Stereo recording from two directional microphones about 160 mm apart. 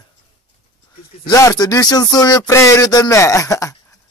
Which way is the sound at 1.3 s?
20° left (ahead or behind).